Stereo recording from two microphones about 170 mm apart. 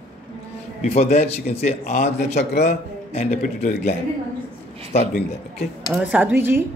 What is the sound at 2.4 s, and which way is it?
Speech, 75° left (ahead or behind).